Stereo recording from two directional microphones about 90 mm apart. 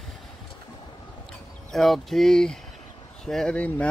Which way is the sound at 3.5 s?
15° left (ahead or behind).